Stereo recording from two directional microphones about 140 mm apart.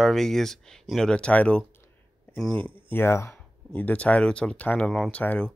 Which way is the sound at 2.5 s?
40° right (ahead or behind).